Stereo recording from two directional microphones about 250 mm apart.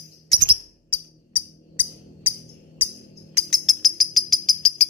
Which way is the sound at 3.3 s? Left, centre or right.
Centre.